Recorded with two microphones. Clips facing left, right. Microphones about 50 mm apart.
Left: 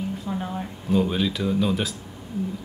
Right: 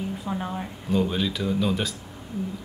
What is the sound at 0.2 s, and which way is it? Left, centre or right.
Speech, centre.